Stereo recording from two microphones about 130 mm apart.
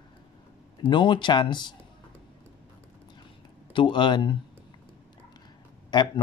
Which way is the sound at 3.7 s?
40° left (ahead or behind).